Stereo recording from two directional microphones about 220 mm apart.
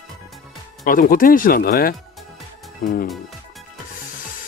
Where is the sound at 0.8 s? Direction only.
40° left (ahead or behind).